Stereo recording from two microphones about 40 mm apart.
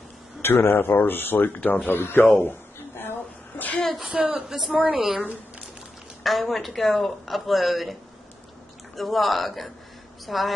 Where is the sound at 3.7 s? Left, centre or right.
Centre.